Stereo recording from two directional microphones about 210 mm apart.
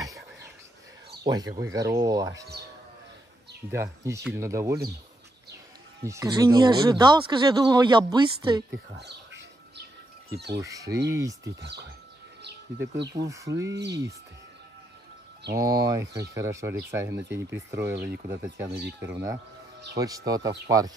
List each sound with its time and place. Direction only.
1.2 s speech: 20° right (ahead or behind)
3.7 s speech: 15° right (ahead or behind)
6.0 s speech: 15° right (ahead or behind)
8.9 s bird: 55° right (ahead or behind)
10.3 s speech: 55° right (ahead or behind)
10.6 s speech: 15° right (ahead or behind)
11.4 s speech: 55° right (ahead or behind)
13.2 s speech: 15° right (ahead or behind)
13.5 s speech: 60° right (ahead or behind)
15.5 s speech: 15° right (ahead or behind)
18.7 s speech: 50° right (ahead or behind)
18.9 s speech: 10° right (ahead or behind)